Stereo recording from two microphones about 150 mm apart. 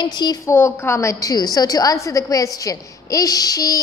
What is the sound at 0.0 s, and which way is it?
Speech, 30° left (ahead or behind).